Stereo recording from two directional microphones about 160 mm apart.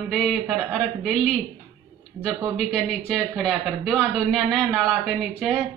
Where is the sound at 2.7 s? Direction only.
5° left (ahead or behind).